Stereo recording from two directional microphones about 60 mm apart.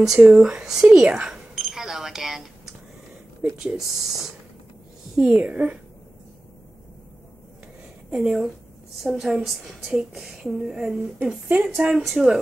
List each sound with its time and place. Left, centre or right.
0.0 s a woman's voice: centre
1.1 s cash register: centre
3.5 s a woman's voice: centre
5.4 s a woman's voice: centre
8.1 s a woman's voice: centre
11.4 s a woman's voice: centre
12.0 s speech: centre